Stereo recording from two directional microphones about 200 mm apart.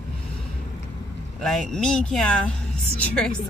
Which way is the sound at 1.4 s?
Centre (ahead or behind).